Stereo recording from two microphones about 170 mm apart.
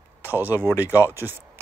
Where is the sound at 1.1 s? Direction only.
10° right (ahead or behind).